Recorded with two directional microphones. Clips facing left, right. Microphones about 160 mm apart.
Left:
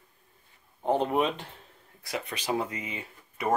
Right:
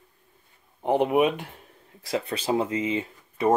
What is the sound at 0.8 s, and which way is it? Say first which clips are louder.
Speech: right 5 dB; 15° right (ahead or behind).